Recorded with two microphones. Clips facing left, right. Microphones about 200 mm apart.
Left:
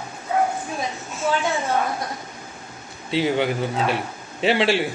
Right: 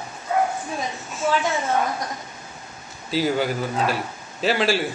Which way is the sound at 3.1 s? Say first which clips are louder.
Left 1 dB; 25° left (ahead or behind).